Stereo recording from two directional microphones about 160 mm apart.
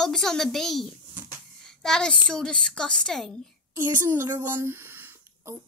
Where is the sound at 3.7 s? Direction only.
15° right (ahead or behind).